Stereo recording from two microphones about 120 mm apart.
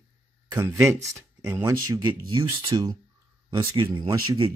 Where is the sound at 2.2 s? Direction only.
40° right (ahead or behind).